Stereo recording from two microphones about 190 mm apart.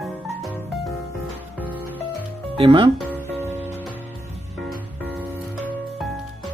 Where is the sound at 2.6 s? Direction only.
25° right (ahead or behind).